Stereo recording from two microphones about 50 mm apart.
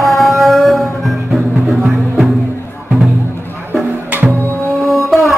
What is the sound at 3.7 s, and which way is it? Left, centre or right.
Music, right.